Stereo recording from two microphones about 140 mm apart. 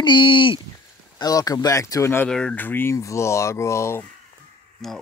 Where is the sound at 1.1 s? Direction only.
25° left (ahead or behind).